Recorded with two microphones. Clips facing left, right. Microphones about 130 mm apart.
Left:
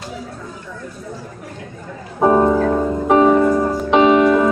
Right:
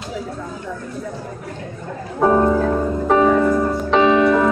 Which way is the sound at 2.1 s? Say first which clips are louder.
Left 2 dB; 15° left (ahead or behind).